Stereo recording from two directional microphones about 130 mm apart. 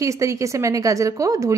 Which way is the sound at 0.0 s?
25° right (ahead or behind).